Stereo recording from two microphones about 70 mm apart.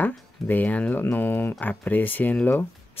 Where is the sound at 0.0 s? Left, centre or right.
Left.